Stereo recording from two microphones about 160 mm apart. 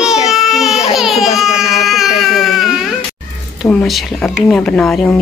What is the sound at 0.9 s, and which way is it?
Baby cry, centre (ahead or behind).